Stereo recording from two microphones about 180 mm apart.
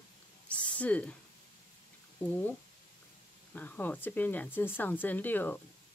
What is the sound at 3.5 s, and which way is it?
Speech, 10° left (ahead or behind).